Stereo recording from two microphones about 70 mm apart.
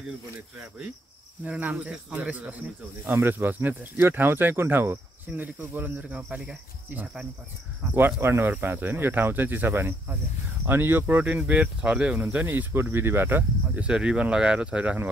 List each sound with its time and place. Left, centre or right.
1.4 s speech: centre
3.1 s speech: right; by 6.5 s centre
7.8 s speech: centre
8.2 s speech: right
8.5 s speech: right
13.7 s speech: centre